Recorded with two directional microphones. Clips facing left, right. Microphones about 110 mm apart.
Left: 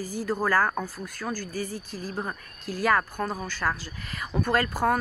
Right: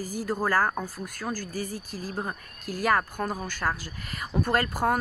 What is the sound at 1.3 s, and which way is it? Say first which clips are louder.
Speech: left 1 dB; 45° right (ahead or behind).